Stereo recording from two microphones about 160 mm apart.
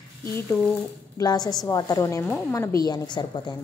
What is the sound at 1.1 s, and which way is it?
A woman's voice, 25° left (ahead or behind).